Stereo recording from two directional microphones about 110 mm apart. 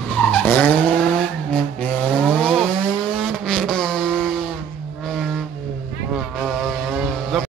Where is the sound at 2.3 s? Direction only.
5° left (ahead or behind).